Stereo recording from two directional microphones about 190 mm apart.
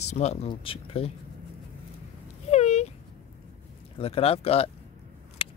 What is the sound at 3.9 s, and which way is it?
Speech, 30° left (ahead or behind).